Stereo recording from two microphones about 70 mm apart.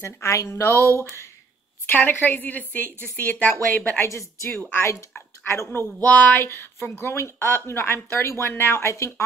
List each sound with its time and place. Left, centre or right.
0.0 s a woman's voice: left
1.9 s a woman's voice: left
4.0 s a woman's voice: left
4.5 s a woman's voice: left
6.0 s a woman's voice: left
6.4 s a woman's voice: left
8.8 s a woman's voice: left